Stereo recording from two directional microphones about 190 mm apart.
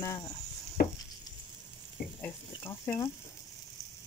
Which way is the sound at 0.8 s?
50° left (ahead or behind).